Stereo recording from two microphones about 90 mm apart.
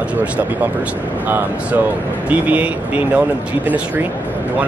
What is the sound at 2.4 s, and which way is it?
Speech, 15° right (ahead or behind).